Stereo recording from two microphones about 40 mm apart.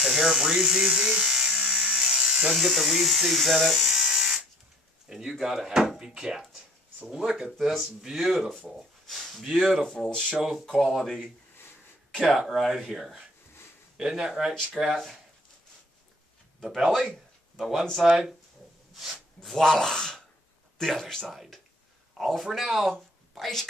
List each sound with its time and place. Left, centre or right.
0.0 s electric shaver: centre
2.5 s speech: centre
8.5 s speech: centre
9.8 s speech: centre
10.4 s speech: centre
11.1 s speech: centre
12.3 s speech: centre
13.9 s speech: centre
14.8 s speech: centre
16.6 s speech: centre
17.9 s speech: centre
18.9 s a sound: centre
19.5 s speech: centre